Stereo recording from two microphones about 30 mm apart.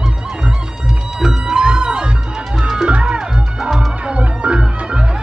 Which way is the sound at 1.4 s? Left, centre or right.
Right.